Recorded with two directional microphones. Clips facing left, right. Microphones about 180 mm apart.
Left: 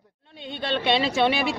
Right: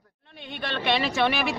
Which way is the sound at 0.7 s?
20° left (ahead or behind).